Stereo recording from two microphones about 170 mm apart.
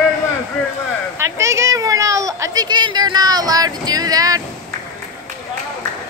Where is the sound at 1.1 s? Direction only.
15° right (ahead or behind).